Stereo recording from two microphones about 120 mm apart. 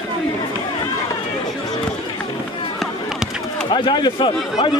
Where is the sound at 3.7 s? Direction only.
40° left (ahead or behind).